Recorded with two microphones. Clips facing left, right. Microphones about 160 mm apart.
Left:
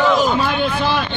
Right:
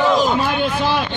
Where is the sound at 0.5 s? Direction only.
10° right (ahead or behind).